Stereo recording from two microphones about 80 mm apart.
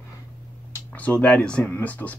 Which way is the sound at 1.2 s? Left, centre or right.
Centre.